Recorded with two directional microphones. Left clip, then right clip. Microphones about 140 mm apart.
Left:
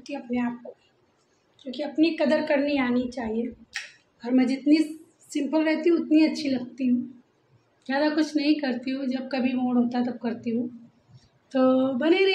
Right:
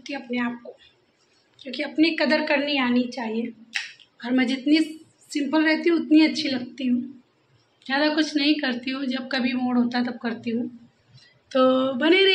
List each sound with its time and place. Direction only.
0.0 s a woman's voice: centre (ahead or behind)
1.6 s a woman's voice: centre (ahead or behind)
2.4 s a woman's voice: 15° left (ahead or behind)
3.8 s finger snapping: centre (ahead or behind)
4.3 s a woman's voice: centre (ahead or behind)
11.2 s a sound: centre (ahead or behind)